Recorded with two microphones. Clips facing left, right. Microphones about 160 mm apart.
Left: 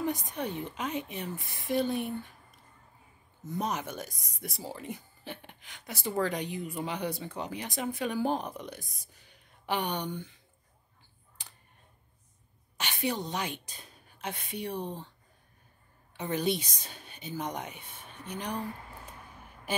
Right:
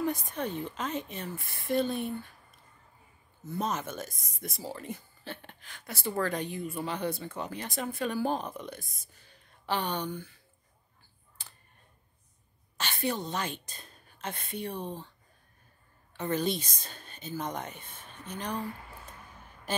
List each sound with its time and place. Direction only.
0.0 s speech: 15° left (ahead or behind)
3.4 s speech: 15° left (ahead or behind)
11.4 s a sound: 15° left (ahead or behind)
12.7 s a woman's voice: 15° left (ahead or behind)
16.2 s speech: 15° left (ahead or behind)